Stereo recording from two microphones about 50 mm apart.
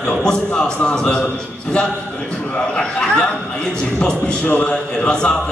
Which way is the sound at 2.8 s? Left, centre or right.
Centre.